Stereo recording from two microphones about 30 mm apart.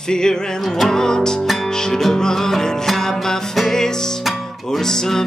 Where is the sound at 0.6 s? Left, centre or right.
Centre.